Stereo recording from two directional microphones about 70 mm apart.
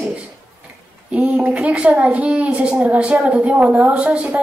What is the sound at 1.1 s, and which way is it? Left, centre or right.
A woman's voice, centre.